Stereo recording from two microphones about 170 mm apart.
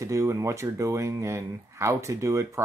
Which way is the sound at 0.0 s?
15° right (ahead or behind).